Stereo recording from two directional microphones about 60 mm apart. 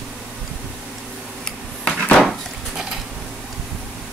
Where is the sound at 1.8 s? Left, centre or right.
Centre.